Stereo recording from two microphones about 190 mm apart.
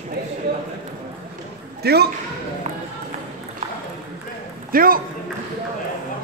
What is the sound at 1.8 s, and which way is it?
Speech, 60° right (ahead or behind).